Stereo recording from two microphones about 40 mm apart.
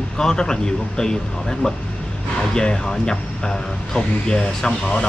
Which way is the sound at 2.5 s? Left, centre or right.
Centre.